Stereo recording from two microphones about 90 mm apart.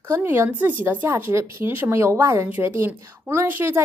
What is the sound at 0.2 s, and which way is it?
A woman's voice, 25° right (ahead or behind).